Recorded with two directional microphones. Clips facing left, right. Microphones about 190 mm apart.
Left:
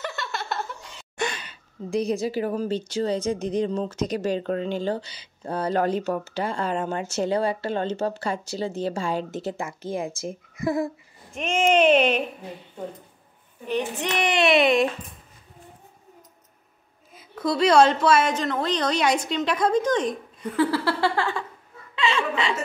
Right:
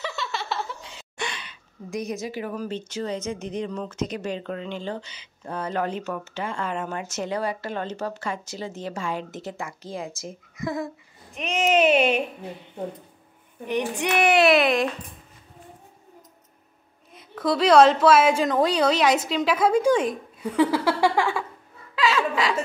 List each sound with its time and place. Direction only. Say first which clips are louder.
0.0 s a sound: even; centre (ahead or behind)
1.1 s gasp: left 5 dB; 45° left (ahead or behind)
1.9 s a woman's voice: left 5 dB; 30° left (ahead or behind)
11.3 s a woman's voice: left 1 dB; centre (ahead or behind)
13.7 s a woman's voice: right 1 dB; 15° right (ahead or behind)
17.1 s a woman's voice: right 1 dB; centre (ahead or behind)
20.7 s a sound: right 2 dB; 15° right (ahead or behind)
21.9 s chuckle: right 2 dB; 5° right (ahead or behind)